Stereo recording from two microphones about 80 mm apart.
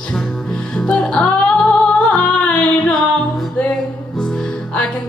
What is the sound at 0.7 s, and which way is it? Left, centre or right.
Music, centre.